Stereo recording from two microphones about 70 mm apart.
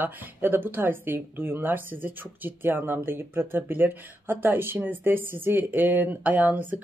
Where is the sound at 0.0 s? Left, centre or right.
Right.